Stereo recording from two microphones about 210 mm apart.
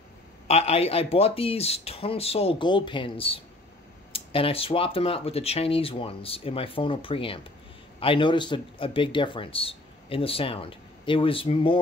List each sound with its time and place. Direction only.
0.5 s speech: 30° left (ahead or behind)